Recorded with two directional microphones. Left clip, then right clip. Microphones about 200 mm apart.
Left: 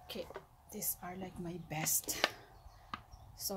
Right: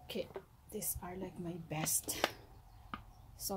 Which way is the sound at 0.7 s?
5° right (ahead or behind).